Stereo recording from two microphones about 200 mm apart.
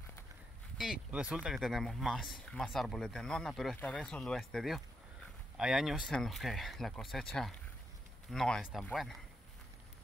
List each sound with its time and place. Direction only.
0.7 s speech: centre (ahead or behind)